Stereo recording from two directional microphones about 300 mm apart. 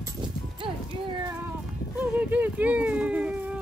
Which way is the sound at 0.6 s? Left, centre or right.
Centre.